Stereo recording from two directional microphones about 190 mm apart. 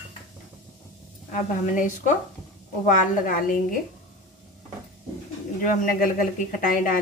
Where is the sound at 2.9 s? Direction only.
45° left (ahead or behind).